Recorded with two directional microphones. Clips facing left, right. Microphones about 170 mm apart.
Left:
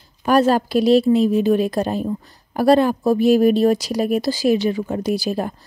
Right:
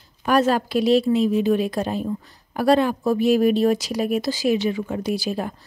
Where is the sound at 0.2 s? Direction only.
35° left (ahead or behind).